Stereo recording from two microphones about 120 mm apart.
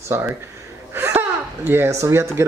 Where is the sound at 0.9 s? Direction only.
20° right (ahead or behind).